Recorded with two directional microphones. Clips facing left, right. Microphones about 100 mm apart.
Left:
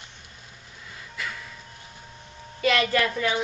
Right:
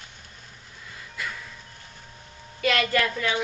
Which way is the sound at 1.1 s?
Centre (ahead or behind).